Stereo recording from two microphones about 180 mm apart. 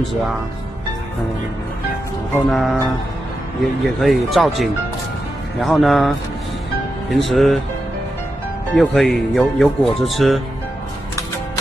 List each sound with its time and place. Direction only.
2.5 s speech: centre (ahead or behind)
4.0 s speech: centre (ahead or behind)
8.7 s speech: centre (ahead or behind)